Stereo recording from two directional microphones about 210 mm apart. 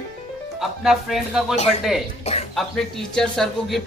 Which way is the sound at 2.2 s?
30° left (ahead or behind).